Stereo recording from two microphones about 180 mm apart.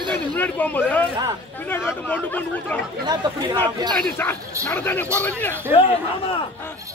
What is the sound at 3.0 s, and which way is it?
Speech, 25° right (ahead or behind).